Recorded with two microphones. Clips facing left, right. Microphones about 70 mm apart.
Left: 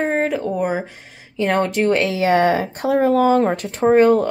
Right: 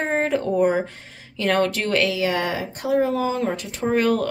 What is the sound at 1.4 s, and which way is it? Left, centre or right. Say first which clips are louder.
Speech: left 3 dB; left.